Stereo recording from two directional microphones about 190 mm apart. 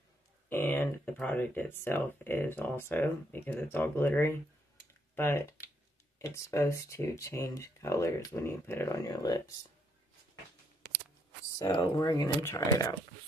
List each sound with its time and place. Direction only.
0.5 s speech: 10° left (ahead or behind)
11.5 s speech: 20° left (ahead or behind)